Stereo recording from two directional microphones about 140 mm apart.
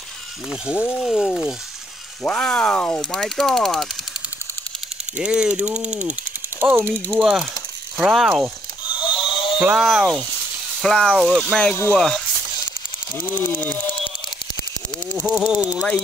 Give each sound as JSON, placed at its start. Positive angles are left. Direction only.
{"t": 0.5, "sound": "speech", "side_deg": -5}
{"t": 5.1, "sound": "speech", "side_deg": -5}
{"t": 7.2, "sound": "speech", "side_deg": 0}
{"t": 8.8, "sound": "a sound", "side_deg": 35}
{"t": 9.6, "sound": "speech", "side_deg": -10}
{"t": 9.8, "sound": "speech", "side_deg": 0}
{"t": 13.2, "sound": "speech", "side_deg": 10}
{"t": 15.2, "sound": "speech", "side_deg": -5}